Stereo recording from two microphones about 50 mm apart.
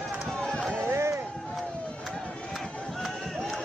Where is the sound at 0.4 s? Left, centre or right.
Centre.